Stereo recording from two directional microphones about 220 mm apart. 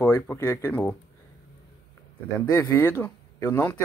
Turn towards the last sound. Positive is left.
turn(degrees=10)  # may be behind; listen again after turning